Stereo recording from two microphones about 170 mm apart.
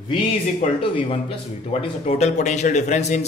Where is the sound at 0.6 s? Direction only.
35° left (ahead or behind).